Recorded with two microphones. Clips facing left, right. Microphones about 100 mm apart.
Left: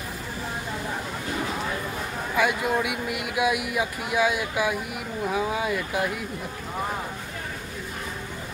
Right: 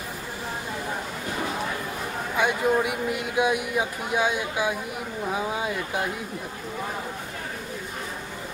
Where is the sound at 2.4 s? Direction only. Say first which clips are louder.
Right 1 dB; 30° right (ahead or behind).